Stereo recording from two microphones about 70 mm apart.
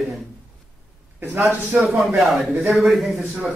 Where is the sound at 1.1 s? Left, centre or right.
Right.